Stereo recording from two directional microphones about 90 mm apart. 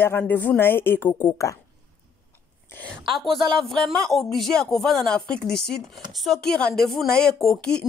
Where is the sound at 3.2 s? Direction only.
Centre (ahead or behind).